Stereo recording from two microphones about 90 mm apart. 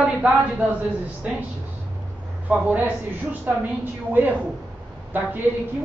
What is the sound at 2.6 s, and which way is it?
Speech, 20° right (ahead or behind).